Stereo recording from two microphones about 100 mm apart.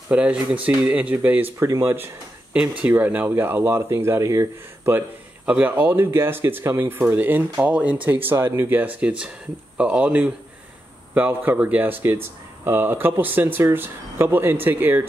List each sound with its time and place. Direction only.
0.1 s speech: 10° right (ahead or behind)